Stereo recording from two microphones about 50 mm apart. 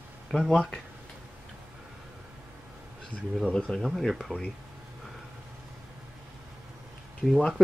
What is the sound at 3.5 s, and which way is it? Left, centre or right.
Speech, centre.